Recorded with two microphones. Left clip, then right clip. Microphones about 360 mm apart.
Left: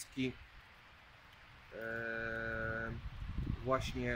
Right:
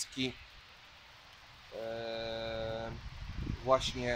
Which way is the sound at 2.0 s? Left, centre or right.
Centre.